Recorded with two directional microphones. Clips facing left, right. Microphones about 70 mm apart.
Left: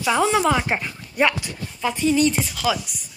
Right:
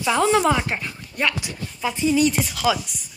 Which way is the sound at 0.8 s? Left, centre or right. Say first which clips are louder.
Left 4 dB; centre.